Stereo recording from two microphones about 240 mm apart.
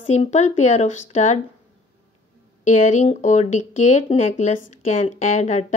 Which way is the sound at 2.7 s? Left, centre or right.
Left.